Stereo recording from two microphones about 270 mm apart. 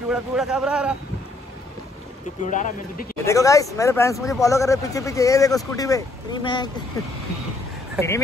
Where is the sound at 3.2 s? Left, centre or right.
Centre.